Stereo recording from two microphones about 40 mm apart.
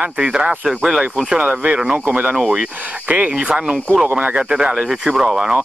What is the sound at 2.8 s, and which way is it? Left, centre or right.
Speech, right.